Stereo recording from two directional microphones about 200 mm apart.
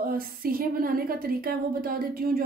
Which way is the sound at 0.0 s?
45° right (ahead or behind).